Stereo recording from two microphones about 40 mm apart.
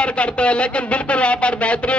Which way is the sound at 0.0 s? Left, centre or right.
Left.